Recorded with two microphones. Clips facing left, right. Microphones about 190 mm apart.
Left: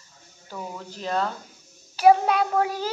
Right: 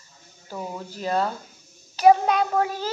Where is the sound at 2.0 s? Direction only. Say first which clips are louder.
Right 1 dB; 5° left (ahead or behind).